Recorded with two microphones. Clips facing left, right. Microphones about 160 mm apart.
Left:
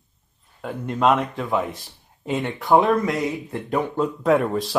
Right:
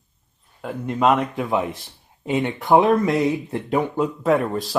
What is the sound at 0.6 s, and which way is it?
Speech, centre (ahead or behind).